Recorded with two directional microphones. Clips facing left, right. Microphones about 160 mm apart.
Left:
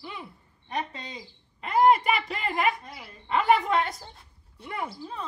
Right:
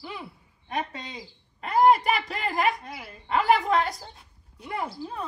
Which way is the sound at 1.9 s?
40° right (ahead or behind).